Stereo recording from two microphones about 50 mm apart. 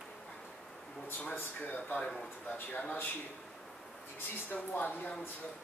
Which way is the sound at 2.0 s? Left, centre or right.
Centre.